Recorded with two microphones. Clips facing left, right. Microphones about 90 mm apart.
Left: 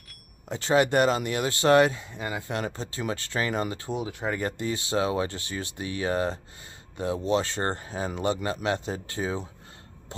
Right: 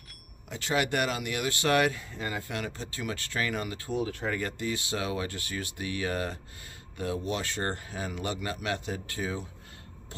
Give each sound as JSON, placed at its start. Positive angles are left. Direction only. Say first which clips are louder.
{"t": 0.5, "sound": "speech", "louder": "left 6 dB", "side_deg": 30}
{"t": 2.5, "sound": "speech", "louder": "left 4 dB", "side_deg": 30}
{"t": 4.4, "sound": "speech", "louder": "left 3 dB", "side_deg": 30}